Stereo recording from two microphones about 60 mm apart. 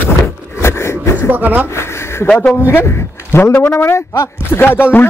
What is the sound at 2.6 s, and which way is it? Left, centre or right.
A man's voice, left.